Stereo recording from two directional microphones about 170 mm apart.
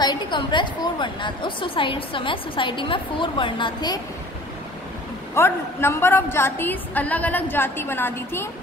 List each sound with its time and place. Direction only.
0.0 s a woman's voice: 25° left (ahead or behind)
5.3 s a woman's voice: 15° left (ahead or behind)